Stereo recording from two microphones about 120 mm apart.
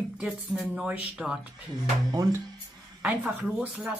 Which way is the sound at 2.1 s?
30° right (ahead or behind).